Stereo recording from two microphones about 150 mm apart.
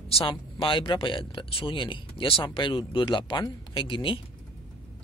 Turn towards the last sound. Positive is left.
turn(degrees=35)  # may be behind; listen again after turning